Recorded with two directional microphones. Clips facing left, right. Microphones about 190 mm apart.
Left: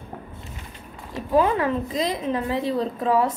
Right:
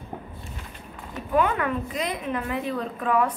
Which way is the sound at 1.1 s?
30° left (ahead or behind).